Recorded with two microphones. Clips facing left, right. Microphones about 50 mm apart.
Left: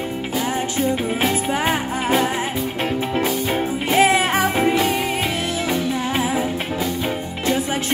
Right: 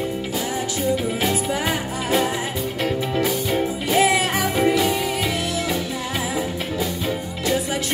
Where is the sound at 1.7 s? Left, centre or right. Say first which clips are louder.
Left 3 dB; left.